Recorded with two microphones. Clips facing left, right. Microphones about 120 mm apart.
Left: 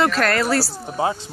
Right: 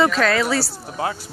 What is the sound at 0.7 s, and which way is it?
Speech, 20° left (ahead or behind).